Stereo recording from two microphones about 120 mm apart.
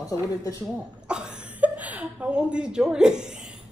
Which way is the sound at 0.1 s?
30° left (ahead or behind).